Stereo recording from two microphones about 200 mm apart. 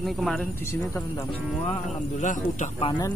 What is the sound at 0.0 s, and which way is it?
Speech, centre (ahead or behind).